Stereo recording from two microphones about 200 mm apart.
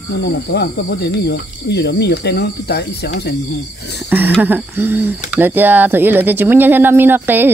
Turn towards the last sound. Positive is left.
turn(degrees=-10)  # may be behind; listen again after turning